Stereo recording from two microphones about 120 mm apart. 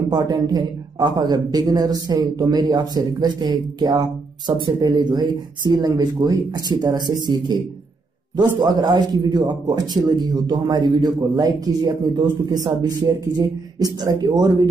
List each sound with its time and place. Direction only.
0.1 s a man's voice: 35° right (ahead or behind)